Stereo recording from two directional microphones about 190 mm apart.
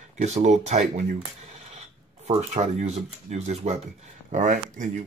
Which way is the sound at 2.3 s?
35° right (ahead or behind).